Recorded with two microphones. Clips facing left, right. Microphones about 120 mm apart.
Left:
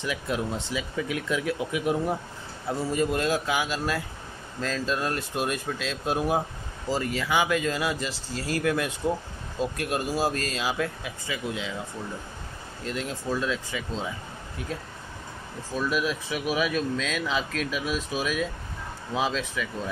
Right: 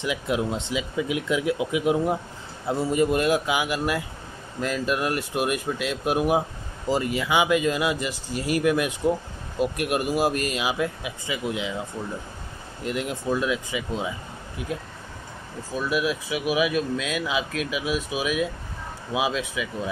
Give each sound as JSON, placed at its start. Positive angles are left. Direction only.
{"t": 0.0, "sound": "speech", "side_deg": -20}
{"t": 12.8, "sound": "speech", "side_deg": -15}